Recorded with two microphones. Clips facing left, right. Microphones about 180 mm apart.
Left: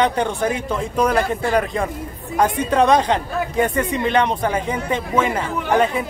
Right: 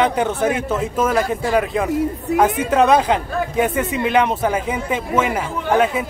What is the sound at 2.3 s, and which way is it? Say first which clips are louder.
Speech: right 2 dB; 80° right.